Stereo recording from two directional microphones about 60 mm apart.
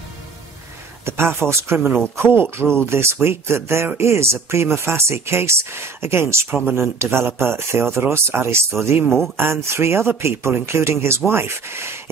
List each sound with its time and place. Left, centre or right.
1.0 s speech: right